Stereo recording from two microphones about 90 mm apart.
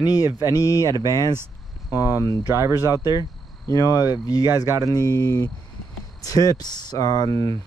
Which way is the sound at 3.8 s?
45° left (ahead or behind).